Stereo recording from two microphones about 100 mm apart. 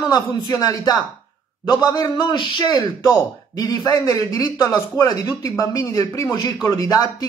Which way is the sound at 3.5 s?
40° left (ahead or behind).